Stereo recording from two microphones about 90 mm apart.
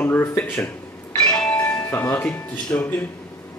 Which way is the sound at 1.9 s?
20° left (ahead or behind).